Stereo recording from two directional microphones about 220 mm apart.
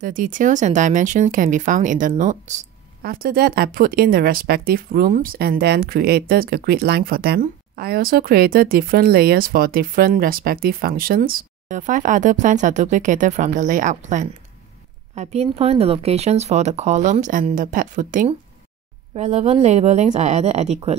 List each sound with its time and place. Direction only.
0.0 s speech: 35° right (ahead or behind)